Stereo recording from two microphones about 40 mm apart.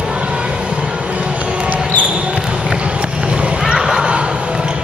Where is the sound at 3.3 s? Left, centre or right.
Right.